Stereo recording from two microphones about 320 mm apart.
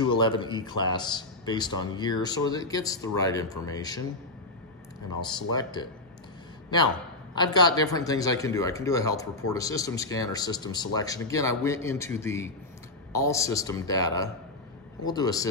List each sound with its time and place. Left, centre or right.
0.0 s speech: centre
5.2 s speech: centre
7.3 s speech: centre